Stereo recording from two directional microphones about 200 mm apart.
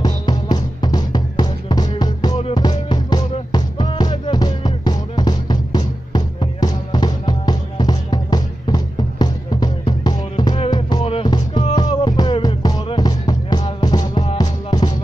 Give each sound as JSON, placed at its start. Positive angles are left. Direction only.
{"t": 0.0, "sound": "music", "side_deg": 20}